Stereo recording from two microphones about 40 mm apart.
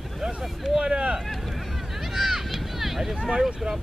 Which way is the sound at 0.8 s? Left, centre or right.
Right.